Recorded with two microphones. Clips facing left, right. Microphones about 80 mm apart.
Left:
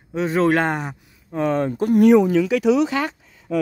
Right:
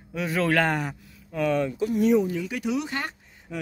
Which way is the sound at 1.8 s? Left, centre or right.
Left.